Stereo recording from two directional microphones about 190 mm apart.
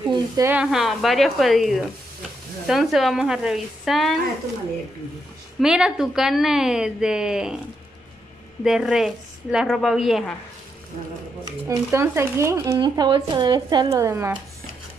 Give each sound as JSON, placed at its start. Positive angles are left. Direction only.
{"t": 0.1, "sound": "a woman's voice", "side_deg": -15}
{"t": 5.6, "sound": "a woman's voice", "side_deg": -5}
{"t": 8.6, "sound": "a woman's voice", "side_deg": 0}
{"t": 11.6, "sound": "speech", "side_deg": -15}